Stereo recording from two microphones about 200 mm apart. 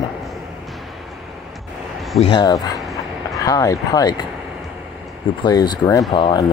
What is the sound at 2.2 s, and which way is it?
Speech, 20° left (ahead or behind).